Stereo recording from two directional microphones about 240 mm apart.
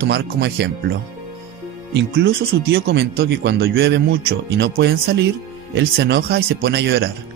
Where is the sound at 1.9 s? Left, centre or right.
Right.